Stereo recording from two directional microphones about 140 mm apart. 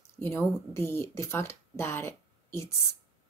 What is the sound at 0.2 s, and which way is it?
Speech, 20° left (ahead or behind).